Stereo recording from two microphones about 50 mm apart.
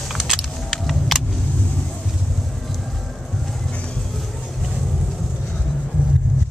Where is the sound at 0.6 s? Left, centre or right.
Centre.